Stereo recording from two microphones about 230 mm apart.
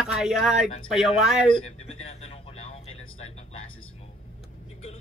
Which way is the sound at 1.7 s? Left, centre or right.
Left.